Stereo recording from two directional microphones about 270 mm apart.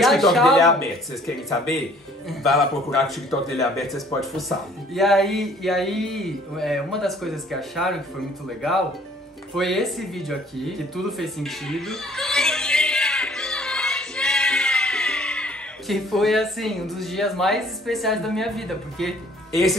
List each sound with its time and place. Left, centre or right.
0.0 s speech: centre
9.6 s speech: centre